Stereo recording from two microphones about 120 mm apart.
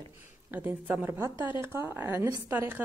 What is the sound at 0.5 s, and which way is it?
A woman's voice, 15° right (ahead or behind).